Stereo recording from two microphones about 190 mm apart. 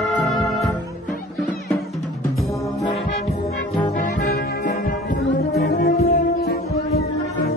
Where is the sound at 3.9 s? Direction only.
50° left (ahead or behind).